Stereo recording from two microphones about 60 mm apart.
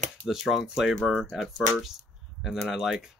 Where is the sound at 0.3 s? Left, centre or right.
Centre.